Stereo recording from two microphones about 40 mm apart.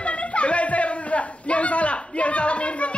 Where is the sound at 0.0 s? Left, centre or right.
Left.